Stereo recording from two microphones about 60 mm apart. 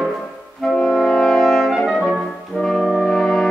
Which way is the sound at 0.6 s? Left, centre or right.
Centre.